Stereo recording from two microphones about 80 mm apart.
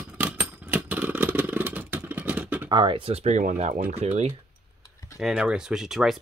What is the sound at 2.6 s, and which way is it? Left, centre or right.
Speech, right.